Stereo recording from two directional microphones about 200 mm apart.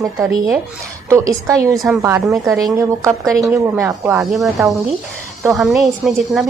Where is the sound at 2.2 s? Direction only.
Centre (ahead or behind).